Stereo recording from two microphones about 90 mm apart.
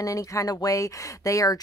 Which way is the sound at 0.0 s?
40° left (ahead or behind).